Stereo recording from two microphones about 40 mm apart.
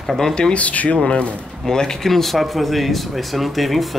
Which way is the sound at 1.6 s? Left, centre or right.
Centre.